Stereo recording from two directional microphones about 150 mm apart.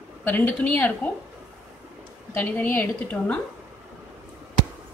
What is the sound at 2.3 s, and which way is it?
A woman's voice, 10° left (ahead or behind).